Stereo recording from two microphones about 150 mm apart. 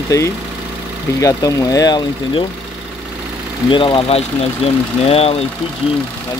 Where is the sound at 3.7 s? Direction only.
35° left (ahead or behind).